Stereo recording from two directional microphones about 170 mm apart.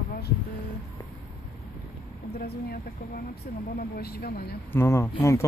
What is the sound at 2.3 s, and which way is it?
Speech, 75° left (ahead or behind).